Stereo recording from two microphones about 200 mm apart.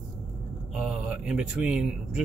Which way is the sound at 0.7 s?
Centre (ahead or behind).